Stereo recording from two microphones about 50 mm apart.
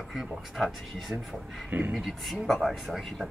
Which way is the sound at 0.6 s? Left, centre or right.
Centre.